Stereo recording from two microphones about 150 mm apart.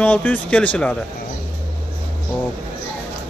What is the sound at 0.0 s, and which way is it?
Speech, 10° left (ahead or behind).